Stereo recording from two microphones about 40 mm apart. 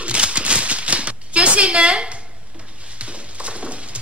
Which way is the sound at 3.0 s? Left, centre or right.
Right.